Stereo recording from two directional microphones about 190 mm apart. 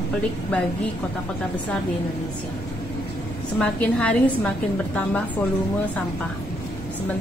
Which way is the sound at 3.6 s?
5° left (ahead or behind).